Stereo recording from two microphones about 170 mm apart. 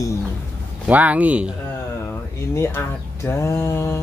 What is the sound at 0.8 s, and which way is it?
Speech, 10° right (ahead or behind).